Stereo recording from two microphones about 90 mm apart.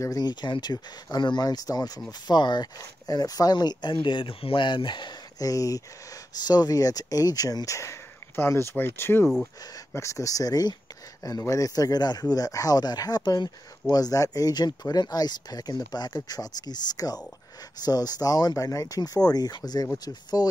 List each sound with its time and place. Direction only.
0.0 s a man's voice: 45° left (ahead or behind)
5.4 s a man's voice: 40° left (ahead or behind)